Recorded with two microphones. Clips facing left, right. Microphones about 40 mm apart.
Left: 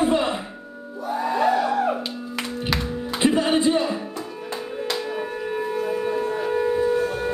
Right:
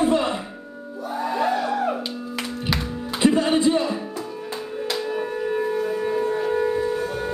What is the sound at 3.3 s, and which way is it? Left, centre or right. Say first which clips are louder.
Music: even; centre.